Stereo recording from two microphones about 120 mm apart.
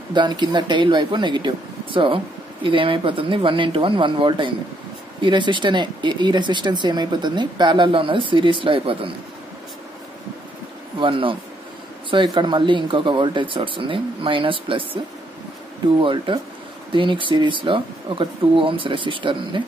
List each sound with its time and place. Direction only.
0.1 s speech: 40° right (ahead or behind)
11.0 s speech: 45° right (ahead or behind)
16.0 s speech: 45° right (ahead or behind)